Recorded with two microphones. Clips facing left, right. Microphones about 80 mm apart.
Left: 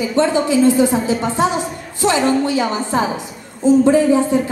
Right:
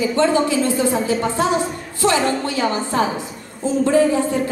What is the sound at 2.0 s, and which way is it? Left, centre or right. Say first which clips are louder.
A woman's voice: left 3 dB; left.